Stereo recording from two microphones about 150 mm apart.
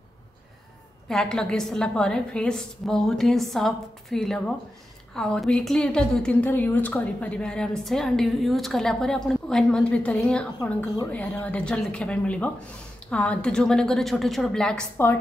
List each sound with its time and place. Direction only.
1.0 s a woman's voice: 5° left (ahead or behind)